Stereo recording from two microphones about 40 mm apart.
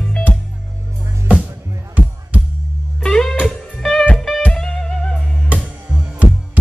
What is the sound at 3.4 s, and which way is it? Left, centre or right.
Music, centre.